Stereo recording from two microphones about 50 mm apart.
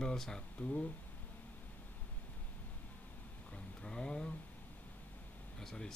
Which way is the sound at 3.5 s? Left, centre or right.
Centre.